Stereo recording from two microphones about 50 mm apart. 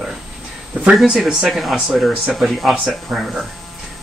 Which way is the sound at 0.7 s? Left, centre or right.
Right.